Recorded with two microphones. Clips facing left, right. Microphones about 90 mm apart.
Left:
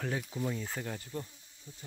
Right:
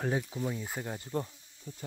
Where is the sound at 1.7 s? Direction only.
65° right (ahead or behind).